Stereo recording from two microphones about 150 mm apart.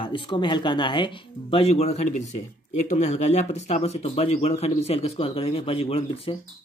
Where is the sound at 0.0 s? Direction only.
35° left (ahead or behind).